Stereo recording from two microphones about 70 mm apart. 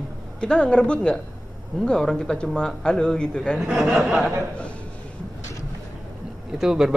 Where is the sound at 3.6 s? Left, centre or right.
Centre.